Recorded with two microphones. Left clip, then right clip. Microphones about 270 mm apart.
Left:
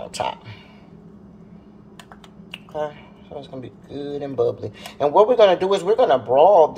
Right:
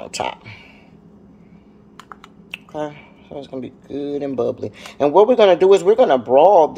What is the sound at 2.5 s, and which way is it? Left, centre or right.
Speech, right.